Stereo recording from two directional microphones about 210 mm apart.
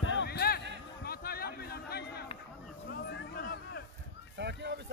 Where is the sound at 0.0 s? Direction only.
60° left (ahead or behind).